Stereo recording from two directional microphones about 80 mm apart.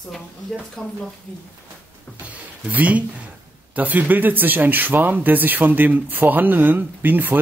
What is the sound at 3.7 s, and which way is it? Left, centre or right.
Speech, centre.